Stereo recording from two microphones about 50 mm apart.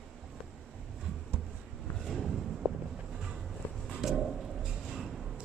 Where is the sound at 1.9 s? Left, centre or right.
Centre.